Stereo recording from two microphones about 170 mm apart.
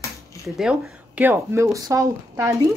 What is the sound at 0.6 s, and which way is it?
Speech, 5° right (ahead or behind).